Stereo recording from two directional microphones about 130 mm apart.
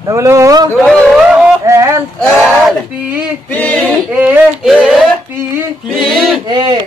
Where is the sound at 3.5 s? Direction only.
5° left (ahead or behind).